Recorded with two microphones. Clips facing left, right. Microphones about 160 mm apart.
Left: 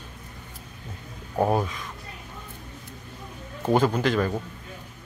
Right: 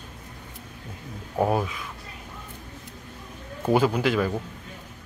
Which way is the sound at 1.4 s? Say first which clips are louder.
Even; centre (ahead or behind).